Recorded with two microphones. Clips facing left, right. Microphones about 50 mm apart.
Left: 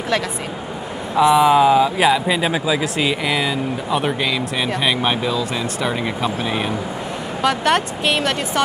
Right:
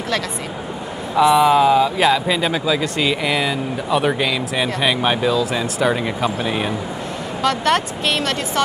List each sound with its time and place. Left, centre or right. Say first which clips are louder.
1.1 s speech: even; centre